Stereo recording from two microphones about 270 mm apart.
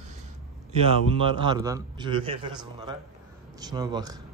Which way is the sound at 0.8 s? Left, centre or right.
Right.